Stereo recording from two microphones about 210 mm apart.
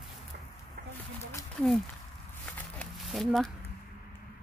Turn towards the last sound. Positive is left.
turn(degrees=0)  # may be behind; listen again after turning